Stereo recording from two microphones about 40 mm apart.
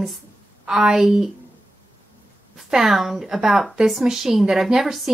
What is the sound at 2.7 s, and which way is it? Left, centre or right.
A woman's voice, centre.